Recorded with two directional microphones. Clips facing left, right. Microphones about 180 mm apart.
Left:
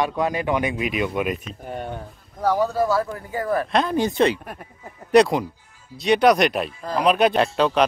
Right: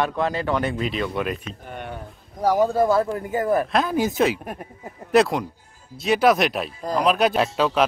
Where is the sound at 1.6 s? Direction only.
40° left (ahead or behind).